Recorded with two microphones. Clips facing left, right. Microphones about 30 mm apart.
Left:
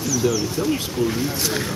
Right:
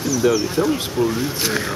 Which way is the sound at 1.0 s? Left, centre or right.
Right.